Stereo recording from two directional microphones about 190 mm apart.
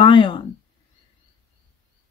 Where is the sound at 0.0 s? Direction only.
25° left (ahead or behind).